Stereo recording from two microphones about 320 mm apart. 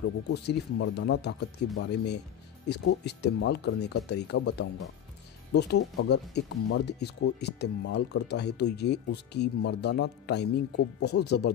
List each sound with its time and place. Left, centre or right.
0.3 s speech: left